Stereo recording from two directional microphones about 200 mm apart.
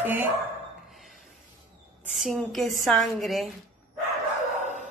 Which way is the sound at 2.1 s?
Centre (ahead or behind).